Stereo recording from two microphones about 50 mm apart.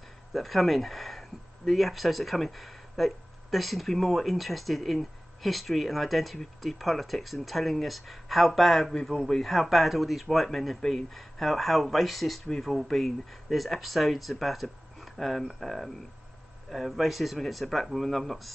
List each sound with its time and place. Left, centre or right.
0.3 s speech: centre